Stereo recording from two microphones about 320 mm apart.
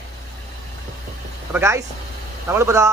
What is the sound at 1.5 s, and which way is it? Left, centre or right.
A man's voice, centre.